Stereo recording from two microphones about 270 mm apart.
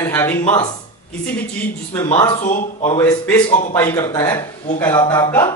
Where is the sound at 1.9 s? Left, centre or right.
Centre.